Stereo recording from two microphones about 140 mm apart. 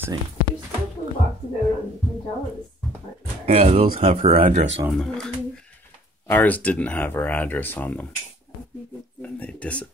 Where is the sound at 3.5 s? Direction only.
50° right (ahead or behind).